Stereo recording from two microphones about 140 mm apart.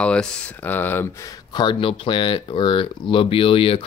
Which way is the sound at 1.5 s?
35° left (ahead or behind).